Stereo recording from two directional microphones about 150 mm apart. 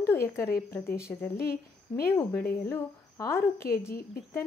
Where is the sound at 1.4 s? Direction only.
90° left.